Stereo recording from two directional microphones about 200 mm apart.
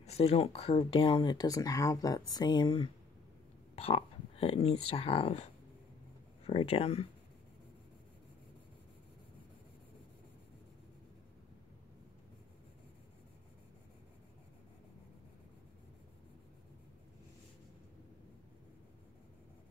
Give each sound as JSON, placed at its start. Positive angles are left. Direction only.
{"t": 0.0, "sound": "speech", "side_deg": 30}